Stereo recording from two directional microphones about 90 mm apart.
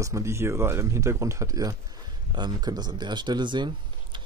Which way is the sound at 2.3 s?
55° right (ahead or behind).